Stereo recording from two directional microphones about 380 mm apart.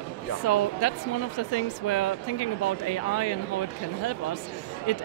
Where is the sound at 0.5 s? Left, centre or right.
Left.